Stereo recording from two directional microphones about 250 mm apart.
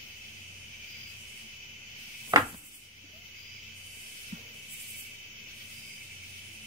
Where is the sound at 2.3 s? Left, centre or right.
Centre.